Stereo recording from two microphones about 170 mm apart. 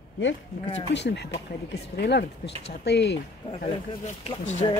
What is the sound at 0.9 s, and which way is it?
Speech, 85° left.